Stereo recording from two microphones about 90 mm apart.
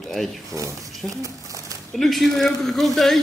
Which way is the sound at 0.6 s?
35° right (ahead or behind).